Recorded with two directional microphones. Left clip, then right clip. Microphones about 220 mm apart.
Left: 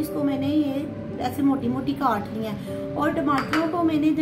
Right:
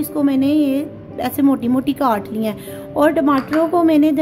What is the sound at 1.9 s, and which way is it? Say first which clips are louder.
A woman's voice: right 4 dB; 45° right (ahead or behind).